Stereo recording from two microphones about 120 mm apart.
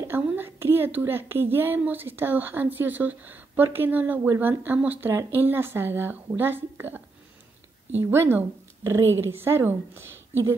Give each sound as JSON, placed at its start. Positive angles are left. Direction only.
{"t": 0.0, "sound": "a woman's voice", "side_deg": -20}
{"t": 8.0, "sound": "speech", "side_deg": -20}